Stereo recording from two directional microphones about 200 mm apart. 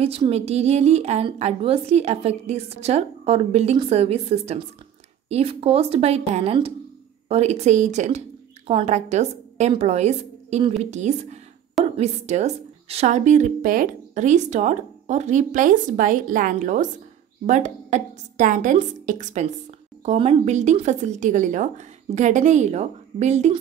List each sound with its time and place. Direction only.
0.0 s a woman's voice: 30° right (ahead or behind)